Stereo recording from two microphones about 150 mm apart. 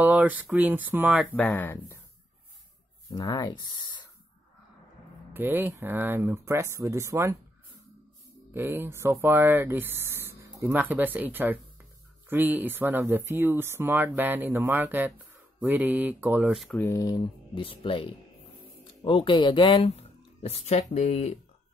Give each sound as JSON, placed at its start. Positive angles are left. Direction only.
{"t": 0.0, "sound": "speech", "side_deg": -10}
{"t": 1.3, "sound": "speech", "side_deg": 10}
{"t": 3.1, "sound": "speech", "side_deg": 25}
{"t": 5.3, "sound": "speech", "side_deg": -15}
{"t": 8.5, "sound": "speech", "side_deg": -15}
{"t": 16.7, "sound": "speech", "side_deg": 15}
{"t": 17.0, "sound": "speech", "side_deg": 30}